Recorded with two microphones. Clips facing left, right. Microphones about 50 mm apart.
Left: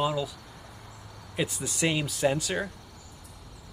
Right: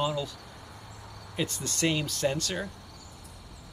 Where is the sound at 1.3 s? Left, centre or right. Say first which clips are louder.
Left 2 dB; centre.